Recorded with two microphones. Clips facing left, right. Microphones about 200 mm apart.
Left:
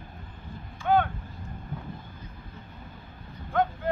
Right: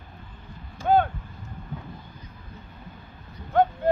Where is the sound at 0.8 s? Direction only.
40° right (ahead or behind).